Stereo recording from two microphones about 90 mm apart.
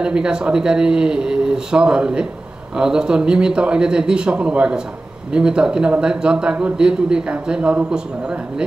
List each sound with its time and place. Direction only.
0.0 s a man's voice: 10° right (ahead or behind)